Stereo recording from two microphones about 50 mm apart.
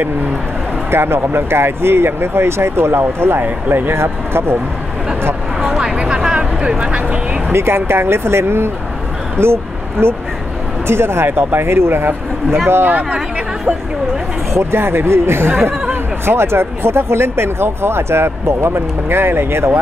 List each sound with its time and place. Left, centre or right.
0.8 s speech: right
4.0 s speech: right
5.8 s a sound: centre
7.5 s speech: right
14.5 s speech: right